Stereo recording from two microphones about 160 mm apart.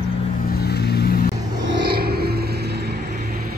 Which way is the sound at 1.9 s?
75° right (ahead or behind).